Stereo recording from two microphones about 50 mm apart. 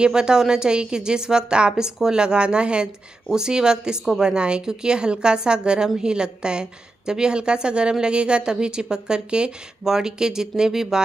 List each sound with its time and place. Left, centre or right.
0.0 s a woman's voice: centre